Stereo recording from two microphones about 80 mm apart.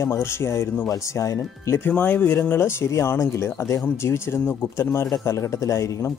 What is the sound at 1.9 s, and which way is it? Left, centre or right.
Speech, left.